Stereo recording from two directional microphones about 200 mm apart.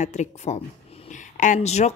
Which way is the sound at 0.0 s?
35° left (ahead or behind).